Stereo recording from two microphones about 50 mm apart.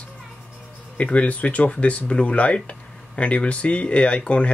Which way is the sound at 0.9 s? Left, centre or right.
Left.